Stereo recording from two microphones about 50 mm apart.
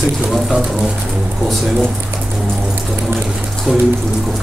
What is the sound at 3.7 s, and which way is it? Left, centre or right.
Speech, centre.